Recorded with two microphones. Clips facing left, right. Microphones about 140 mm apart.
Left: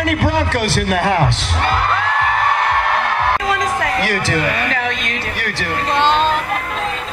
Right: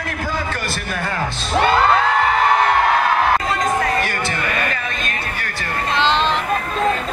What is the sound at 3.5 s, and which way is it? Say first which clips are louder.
Speech: even; 90° left.